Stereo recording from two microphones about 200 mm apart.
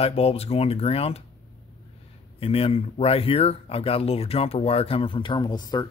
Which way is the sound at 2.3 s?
30° left (ahead or behind).